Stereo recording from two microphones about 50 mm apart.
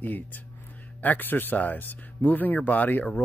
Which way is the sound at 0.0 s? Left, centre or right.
Left.